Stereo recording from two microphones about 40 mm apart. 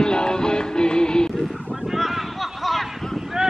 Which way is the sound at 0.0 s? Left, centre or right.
Centre.